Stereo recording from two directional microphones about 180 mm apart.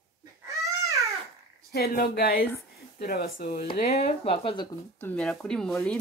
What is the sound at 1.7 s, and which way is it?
Speech, 60° left (ahead or behind).